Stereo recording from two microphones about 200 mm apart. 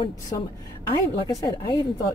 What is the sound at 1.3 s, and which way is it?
Speech, 20° left (ahead or behind).